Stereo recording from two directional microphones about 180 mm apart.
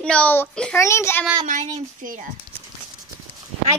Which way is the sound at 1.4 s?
45° right (ahead or behind).